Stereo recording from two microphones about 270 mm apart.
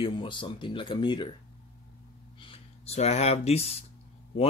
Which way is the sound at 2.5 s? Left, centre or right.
Left.